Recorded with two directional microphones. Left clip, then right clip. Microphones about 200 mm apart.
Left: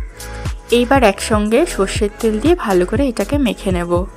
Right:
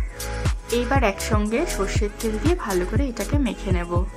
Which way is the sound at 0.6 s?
40° left (ahead or behind).